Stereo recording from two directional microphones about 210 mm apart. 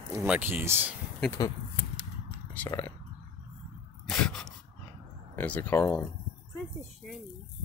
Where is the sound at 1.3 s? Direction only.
15° left (ahead or behind).